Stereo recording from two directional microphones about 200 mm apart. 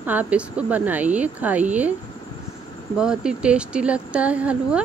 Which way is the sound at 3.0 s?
5° right (ahead or behind).